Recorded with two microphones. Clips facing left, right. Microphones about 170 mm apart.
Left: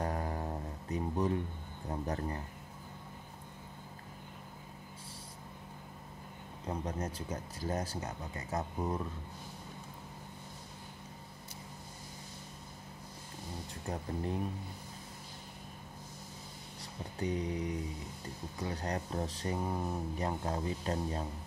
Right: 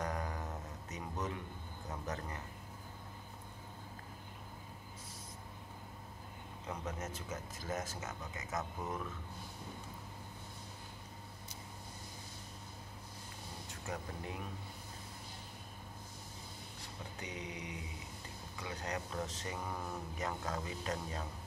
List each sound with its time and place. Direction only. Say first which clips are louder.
0.0 s music: left 4 dB; 30° left (ahead or behind)
1.9 s speech: left 6 dB; 30° left (ahead or behind)
6.7 s speech: left 5 dB; 30° left (ahead or behind)
13.8 s speech: left 6 dB; 35° left (ahead or behind)
17.2 s speech: left 11 dB; 35° left (ahead or behind)